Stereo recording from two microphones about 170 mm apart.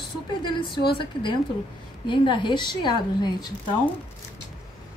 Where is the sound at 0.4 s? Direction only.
25° left (ahead or behind).